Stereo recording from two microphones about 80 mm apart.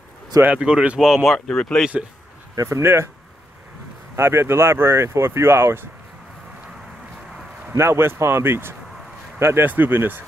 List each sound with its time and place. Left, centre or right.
0.6 s speech: centre
1.3 s speech: centre
2.5 s speech: right
2.8 s speech: right
4.1 s speech: right
7.7 s speech: right